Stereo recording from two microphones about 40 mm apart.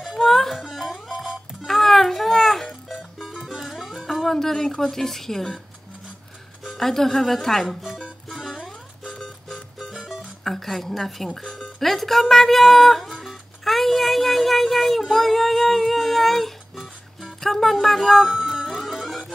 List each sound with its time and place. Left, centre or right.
0.2 s music: centre
1.1 s music: centre
1.7 s music: centre
3.2 s music: centre
4.0 s speech: centre
6.8 s speech: centre
7.9 s music: centre
9.5 s music: centre
10.4 s speech: centre
13.2 s music: centre
17.3 s speech: centre
18.3 s music: centre